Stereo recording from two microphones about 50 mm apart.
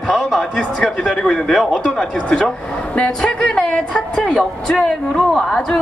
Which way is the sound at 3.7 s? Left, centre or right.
Left.